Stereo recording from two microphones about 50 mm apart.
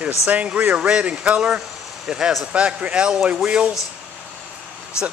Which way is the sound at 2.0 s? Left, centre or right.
Centre.